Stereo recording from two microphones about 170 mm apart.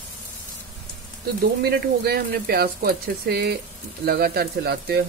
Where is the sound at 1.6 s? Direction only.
65° right (ahead or behind).